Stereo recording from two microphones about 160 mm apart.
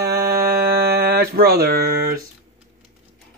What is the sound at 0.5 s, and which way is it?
Music, 80° right.